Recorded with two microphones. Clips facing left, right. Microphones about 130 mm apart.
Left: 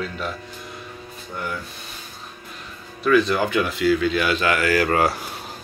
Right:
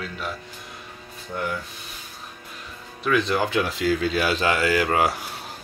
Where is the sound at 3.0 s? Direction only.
20° right (ahead or behind).